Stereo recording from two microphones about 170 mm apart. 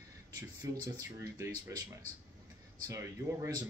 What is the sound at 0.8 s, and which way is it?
Speech, 20° right (ahead or behind).